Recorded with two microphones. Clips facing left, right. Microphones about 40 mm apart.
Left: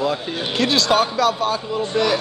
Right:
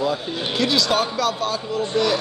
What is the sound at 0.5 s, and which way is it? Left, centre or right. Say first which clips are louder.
Speech: left 2 dB; left.